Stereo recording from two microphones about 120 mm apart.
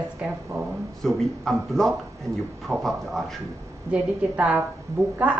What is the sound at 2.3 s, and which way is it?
Speech, 25° right (ahead or behind).